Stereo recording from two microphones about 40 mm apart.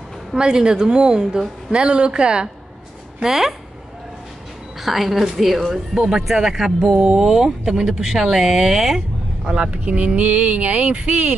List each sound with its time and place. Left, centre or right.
0.4 s a woman's voice: right
3.3 s speech: centre
4.8 s a woman's voice: centre
9.5 s a woman's voice: right
9.8 s speech: right